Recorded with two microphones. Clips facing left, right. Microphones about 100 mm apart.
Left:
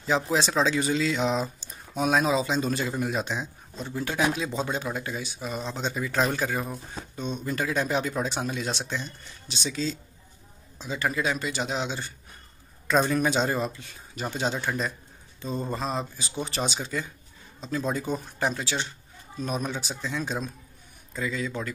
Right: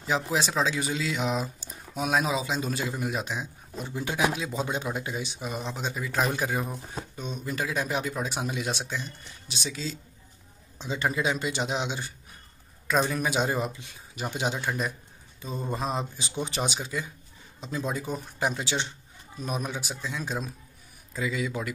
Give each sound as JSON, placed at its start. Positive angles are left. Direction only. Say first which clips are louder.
{"t": 0.0, "sound": "speech", "louder": "left 2 dB", "side_deg": -5}
{"t": 4.4, "sound": "speech", "louder": "left 2 dB", "side_deg": -5}
{"t": 4.6, "sound": "speech", "louder": "left 1 dB", "side_deg": -15}
{"t": 10.8, "sound": "a man's voice", "louder": "even", "side_deg": -25}
{"t": 12.8, "sound": "speech", "louder": "left 3 dB", "side_deg": 0}
{"t": 18.5, "sound": "a man's voice", "louder": "even", "side_deg": -20}
{"t": 19.4, "sound": "speech", "louder": "left 2 dB", "side_deg": -10}